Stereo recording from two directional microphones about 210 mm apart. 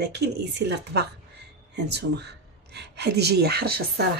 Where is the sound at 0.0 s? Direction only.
50° right (ahead or behind).